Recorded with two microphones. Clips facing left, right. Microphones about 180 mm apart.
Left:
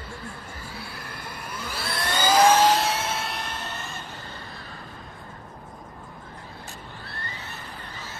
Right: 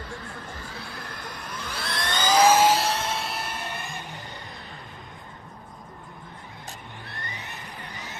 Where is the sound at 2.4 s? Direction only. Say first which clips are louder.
Even; 5° right (ahead or behind).